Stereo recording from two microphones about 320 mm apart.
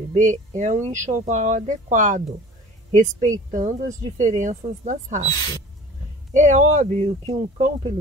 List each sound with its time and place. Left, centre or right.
0.1 s speech: right
6.3 s speech: right